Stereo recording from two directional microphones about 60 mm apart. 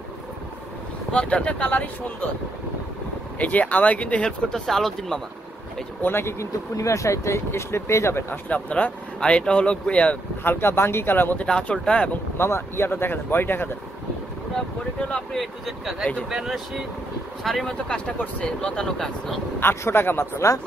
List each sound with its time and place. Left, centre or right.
1.1 s speech: left
3.3 s speech: left
4.5 s speech: centre
6.0 s speech: left
6.4 s speech: left
8.5 s speech: left
10.4 s speech: left
11.4 s speech: centre
12.4 s speech: left
15.0 s speech: left
15.3 s speech: centre
17.8 s speech: centre
19.6 s speech: left